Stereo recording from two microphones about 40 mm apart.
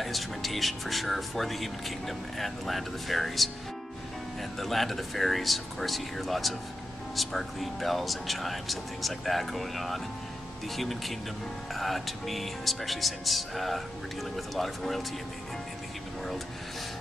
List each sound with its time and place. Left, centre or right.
0.0 s speech: centre
4.6 s speech: centre